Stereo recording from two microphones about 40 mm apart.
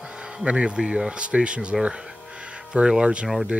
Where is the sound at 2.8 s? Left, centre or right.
Right.